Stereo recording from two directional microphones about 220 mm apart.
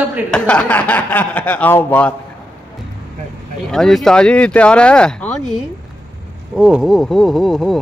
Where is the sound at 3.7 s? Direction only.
Centre (ahead or behind).